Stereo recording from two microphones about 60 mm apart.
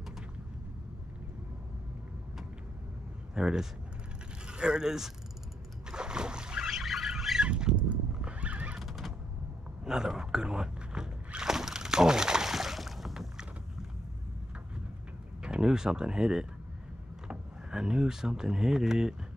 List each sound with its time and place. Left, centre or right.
3.3 s speech: centre
5.9 s boat: centre
7.4 s rodents: centre
8.7 s a sound: centre
15.4 s speech: centre